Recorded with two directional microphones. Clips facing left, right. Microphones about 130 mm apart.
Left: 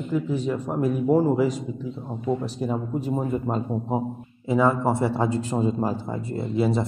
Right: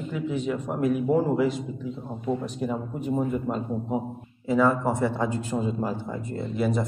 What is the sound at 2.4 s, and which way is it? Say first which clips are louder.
Speech: left 2 dB; 35° left (ahead or behind).